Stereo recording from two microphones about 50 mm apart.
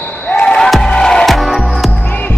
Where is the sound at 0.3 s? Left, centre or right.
Left.